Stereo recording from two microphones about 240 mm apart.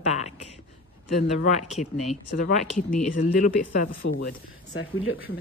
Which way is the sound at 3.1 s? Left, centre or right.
Left.